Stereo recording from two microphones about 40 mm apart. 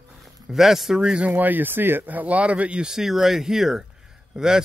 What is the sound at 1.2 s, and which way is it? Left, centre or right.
Speech, right.